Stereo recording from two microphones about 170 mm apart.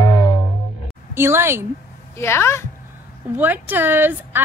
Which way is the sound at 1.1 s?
15° right (ahead or behind).